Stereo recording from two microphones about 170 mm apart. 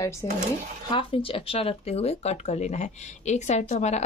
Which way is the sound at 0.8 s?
30° left (ahead or behind).